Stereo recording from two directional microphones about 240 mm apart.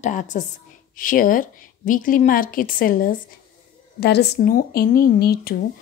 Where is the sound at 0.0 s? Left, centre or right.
Left.